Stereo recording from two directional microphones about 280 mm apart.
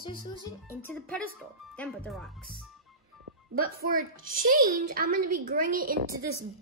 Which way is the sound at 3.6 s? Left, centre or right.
Right.